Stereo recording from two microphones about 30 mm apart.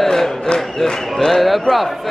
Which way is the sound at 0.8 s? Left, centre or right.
Centre.